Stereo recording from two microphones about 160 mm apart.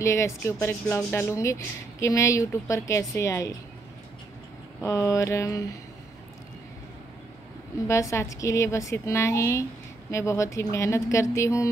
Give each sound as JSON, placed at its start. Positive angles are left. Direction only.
{"t": 0.0, "sound": "speech", "side_deg": 20}
{"t": 4.8, "sound": "speech", "side_deg": 20}
{"t": 7.9, "sound": "speech", "side_deg": 20}